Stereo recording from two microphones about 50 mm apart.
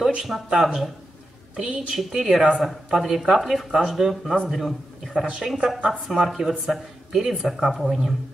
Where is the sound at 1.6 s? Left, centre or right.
Centre.